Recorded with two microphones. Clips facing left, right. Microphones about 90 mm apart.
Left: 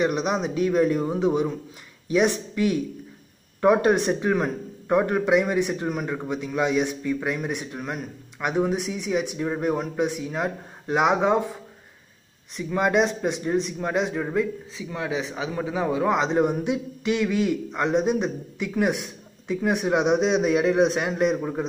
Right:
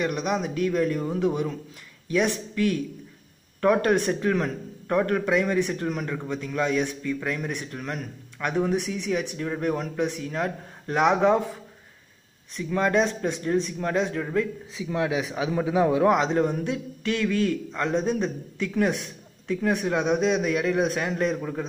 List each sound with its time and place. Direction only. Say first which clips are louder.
0.0 s a man's voice: left 3 dB; 20° left (ahead or behind)
12.5 s speech: left 1 dB; 10° left (ahead or behind)
14.8 s a man's voice: right 3 dB; 5° right (ahead or behind)
16.3 s speech: left 2 dB; 15° left (ahead or behind)